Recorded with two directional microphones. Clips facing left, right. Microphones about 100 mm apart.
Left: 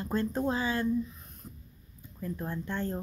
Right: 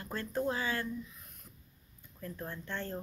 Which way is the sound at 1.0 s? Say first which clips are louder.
Left 10 dB; 30° left (ahead or behind).